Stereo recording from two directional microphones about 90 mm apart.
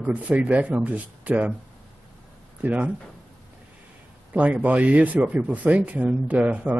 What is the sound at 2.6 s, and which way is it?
Speech, 20° right (ahead or behind).